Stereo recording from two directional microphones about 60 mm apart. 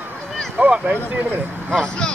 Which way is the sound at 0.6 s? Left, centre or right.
Centre.